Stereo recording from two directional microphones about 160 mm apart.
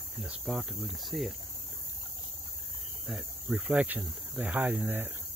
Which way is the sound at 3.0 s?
5° right (ahead or behind).